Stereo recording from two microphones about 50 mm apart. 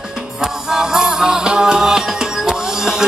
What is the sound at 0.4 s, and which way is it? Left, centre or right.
Music, centre.